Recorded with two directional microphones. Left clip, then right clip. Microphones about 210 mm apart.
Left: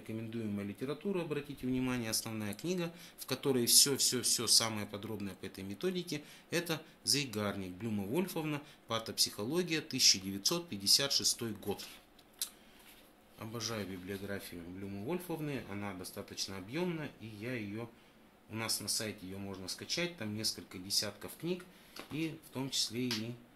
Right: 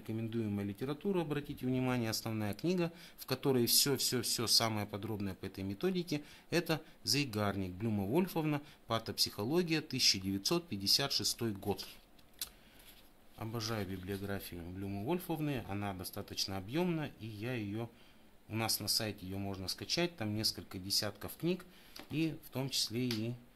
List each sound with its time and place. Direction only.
0.0 s speech: 55° right (ahead or behind)
12.4 s scissors: 45° right (ahead or behind)
13.4 s speech: 50° right (ahead or behind)